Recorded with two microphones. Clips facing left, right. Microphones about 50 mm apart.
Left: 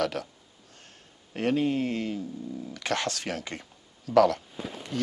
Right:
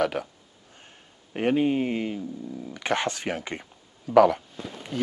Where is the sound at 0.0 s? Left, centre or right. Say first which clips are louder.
Right 3 dB; centre.